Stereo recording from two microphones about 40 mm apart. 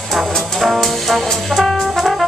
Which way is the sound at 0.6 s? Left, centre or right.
Centre.